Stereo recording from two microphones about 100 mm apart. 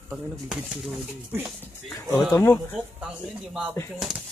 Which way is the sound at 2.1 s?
30° left (ahead or behind).